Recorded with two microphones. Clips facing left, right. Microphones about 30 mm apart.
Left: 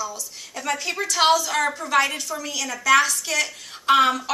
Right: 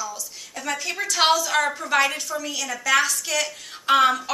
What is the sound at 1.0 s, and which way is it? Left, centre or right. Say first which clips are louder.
A woman's voice: left 1 dB; centre.